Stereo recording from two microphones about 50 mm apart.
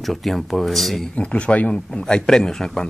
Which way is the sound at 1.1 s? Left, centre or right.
Left.